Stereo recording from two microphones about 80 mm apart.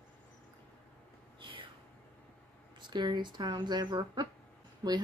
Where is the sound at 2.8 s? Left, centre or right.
Right.